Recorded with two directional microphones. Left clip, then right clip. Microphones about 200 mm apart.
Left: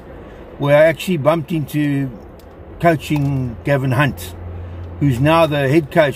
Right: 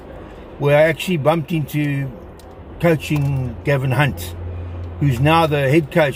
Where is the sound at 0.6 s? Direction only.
15° left (ahead or behind).